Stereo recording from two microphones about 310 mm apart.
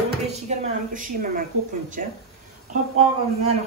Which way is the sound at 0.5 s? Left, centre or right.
Right.